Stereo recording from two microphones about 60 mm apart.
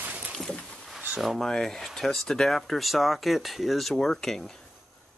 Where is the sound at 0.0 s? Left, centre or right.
Right.